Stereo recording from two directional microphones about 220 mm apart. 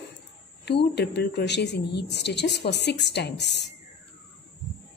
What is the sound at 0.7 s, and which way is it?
Speech, 50° left (ahead or behind).